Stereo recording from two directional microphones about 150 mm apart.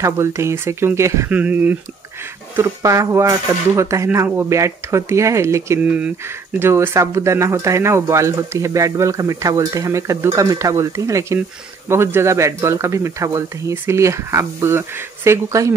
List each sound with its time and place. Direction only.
0.0 s speech: 20° right (ahead or behind)